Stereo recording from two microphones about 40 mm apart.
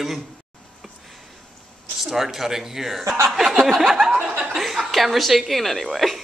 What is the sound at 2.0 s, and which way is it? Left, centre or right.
A man's voice, centre.